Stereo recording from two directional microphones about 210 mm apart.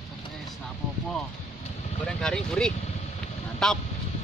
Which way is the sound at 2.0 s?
5° left (ahead or behind).